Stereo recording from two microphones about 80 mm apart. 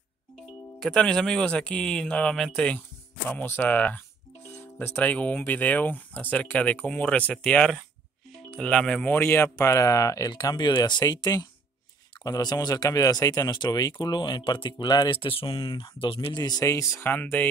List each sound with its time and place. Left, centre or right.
0.9 s speech: centre
3.3 s speech: left
4.5 s speech: left
10.3 s speech: left
16.6 s speech: left
17.0 s speech: left